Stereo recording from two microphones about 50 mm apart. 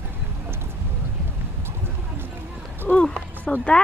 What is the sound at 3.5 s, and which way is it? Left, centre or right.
Speech, left.